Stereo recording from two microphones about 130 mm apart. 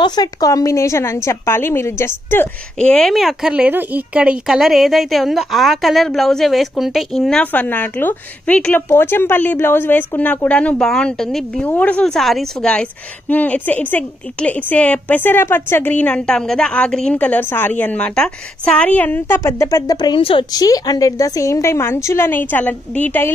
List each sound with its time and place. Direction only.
0.0 s a woman's voice: 30° left (ahead or behind)
2.8 s a woman's voice: 5° left (ahead or behind); by 20.4 s 40° left (ahead or behind)
20.5 s a woman's voice: 30° left (ahead or behind); by 23.3 s 15° left (ahead or behind)